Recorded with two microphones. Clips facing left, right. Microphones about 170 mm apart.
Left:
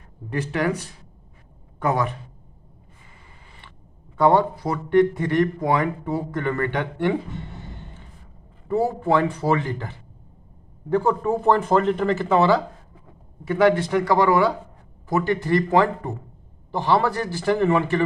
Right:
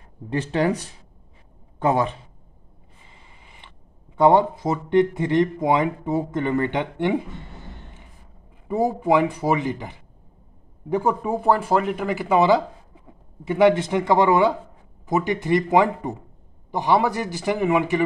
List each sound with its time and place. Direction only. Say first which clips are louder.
0.3 s speech: right 2 dB; 30° right (ahead or behind)
1.8 s speech: right 2 dB; 25° right (ahead or behind)
3.4 s a sound: even; 20° right (ahead or behind)
4.2 s speech: right 2 dB; 20° right (ahead or behind)
8.6 s speech: right 1 dB; 15° right (ahead or behind)